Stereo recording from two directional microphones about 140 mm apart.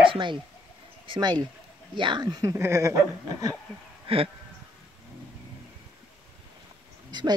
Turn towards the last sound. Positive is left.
turn(degrees=-30)  # may be behind; listen again after turning